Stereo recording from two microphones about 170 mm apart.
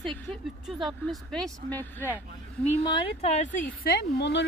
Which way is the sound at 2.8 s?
30° left (ahead or behind).